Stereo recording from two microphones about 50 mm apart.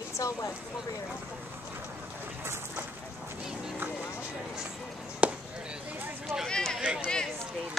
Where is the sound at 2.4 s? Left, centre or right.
Right.